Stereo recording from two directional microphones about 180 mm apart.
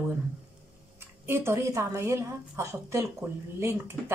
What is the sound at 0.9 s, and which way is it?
Speech, 15° right (ahead or behind).